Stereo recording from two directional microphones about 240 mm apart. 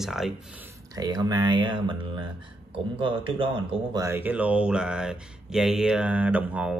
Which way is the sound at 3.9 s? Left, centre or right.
Centre.